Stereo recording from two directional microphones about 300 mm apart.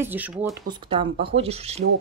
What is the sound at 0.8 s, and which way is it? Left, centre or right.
Speech, centre.